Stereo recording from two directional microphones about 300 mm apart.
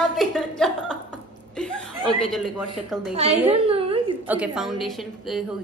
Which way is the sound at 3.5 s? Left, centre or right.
Centre.